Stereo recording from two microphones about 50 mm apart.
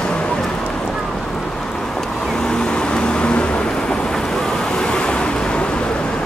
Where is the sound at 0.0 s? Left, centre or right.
Centre.